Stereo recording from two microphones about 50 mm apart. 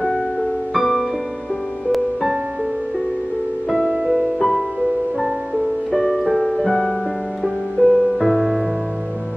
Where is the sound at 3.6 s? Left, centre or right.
Centre.